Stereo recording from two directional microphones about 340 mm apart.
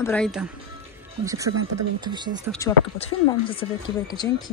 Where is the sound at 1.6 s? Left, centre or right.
Right.